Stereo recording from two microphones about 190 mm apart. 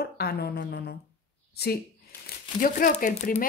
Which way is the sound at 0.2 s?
55° left (ahead or behind).